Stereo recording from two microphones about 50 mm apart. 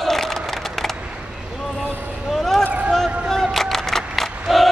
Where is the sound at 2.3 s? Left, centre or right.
Centre.